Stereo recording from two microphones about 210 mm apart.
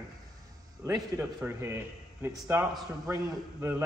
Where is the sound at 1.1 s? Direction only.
10° right (ahead or behind).